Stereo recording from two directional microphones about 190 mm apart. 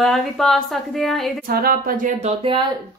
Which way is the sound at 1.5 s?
50° right (ahead or behind).